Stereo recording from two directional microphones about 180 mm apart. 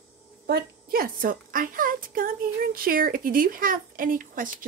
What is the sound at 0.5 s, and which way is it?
A woman's voice, 55° right (ahead or behind).